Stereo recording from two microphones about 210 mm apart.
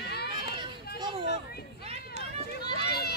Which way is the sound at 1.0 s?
20° right (ahead or behind).